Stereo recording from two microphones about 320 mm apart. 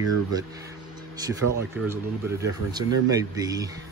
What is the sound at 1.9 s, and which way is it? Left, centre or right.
Speech, centre.